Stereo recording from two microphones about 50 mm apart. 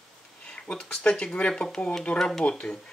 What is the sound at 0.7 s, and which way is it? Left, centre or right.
Speech, centre.